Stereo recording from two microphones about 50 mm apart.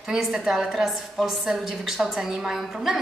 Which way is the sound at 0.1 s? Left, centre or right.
Centre.